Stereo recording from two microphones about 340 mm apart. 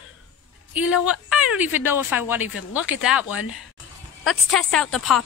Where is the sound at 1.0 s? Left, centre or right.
Centre.